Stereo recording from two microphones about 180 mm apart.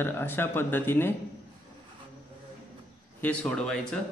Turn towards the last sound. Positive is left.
turn(degrees=5)  # may be behind; listen again after turning